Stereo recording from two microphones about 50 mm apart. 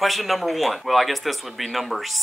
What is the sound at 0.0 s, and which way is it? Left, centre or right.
Speech, centre.